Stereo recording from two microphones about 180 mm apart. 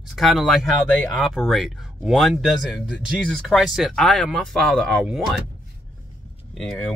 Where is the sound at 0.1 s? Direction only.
Centre (ahead or behind).